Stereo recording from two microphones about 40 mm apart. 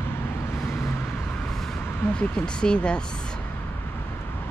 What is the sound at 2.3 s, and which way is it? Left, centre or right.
Speech, left.